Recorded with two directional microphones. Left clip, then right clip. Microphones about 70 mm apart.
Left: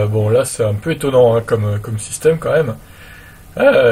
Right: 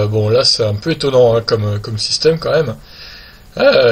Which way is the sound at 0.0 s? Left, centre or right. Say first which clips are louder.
Right 2 dB; right.